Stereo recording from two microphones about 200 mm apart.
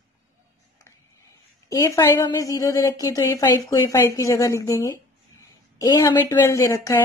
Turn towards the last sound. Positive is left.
turn(degrees=15)  # may be behind; listen again after turning